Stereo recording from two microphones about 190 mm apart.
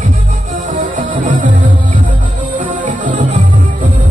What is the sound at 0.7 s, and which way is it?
Music, 45° right (ahead or behind).